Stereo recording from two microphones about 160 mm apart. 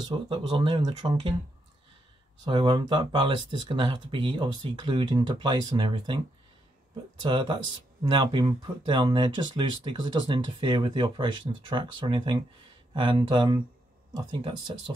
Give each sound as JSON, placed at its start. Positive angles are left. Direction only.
{"t": 0.0, "sound": "speech", "side_deg": -30}
{"t": 2.4, "sound": "speech", "side_deg": -30}